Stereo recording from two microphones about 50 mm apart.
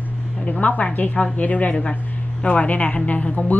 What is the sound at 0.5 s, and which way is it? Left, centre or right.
A woman's voice, left.